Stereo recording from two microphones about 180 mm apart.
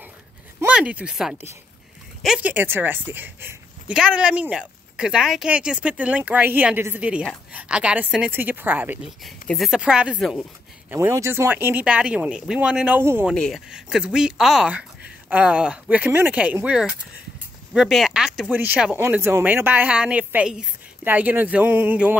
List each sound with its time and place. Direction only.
0.6 s a woman's voice: 5° right (ahead or behind)
10.9 s a woman's voice: 15° right (ahead or behind)
13.3 s a woman's voice: centre (ahead or behind)